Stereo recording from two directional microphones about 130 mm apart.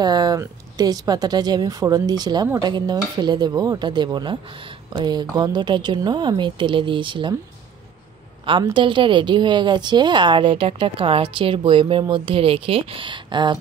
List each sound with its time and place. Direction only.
0.0 s a woman's voice: 30° right (ahead or behind)
8.7 s a woman's voice: 40° right (ahead or behind)